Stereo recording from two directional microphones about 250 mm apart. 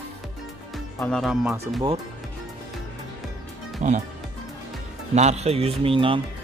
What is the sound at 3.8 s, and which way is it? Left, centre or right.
Speech, right.